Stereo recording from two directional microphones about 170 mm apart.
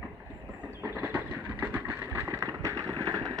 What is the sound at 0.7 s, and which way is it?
Vehicle, 15° right (ahead or behind).